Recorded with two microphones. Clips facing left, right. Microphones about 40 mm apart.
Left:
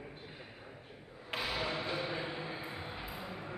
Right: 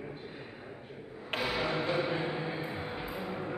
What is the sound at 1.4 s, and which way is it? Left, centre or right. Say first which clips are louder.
Music: right 5 dB; right.